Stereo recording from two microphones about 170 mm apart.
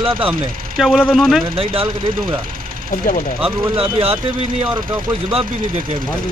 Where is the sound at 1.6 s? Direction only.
35° right (ahead or behind).